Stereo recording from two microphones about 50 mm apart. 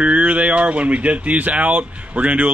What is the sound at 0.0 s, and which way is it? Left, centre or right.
Speech, right.